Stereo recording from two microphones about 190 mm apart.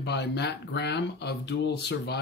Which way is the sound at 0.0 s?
65° left (ahead or behind).